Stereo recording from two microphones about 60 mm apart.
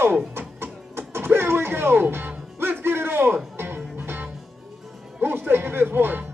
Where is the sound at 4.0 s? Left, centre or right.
Right.